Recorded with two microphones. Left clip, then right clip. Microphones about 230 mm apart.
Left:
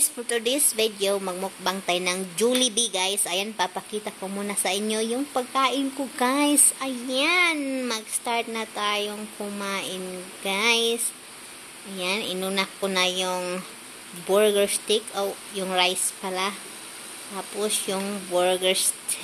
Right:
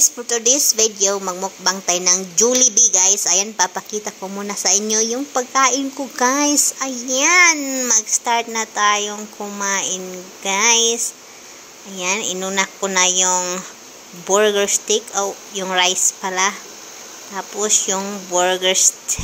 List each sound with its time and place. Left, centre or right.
0.3 s a woman's voice: centre
12.0 s a woman's voice: centre